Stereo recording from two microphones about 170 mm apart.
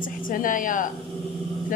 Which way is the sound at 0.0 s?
55° left (ahead or behind).